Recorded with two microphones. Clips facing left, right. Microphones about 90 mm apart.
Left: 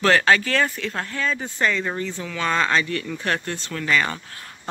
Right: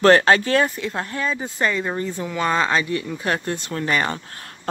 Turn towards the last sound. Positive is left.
turn(degrees=-30)  # may be behind; listen again after turning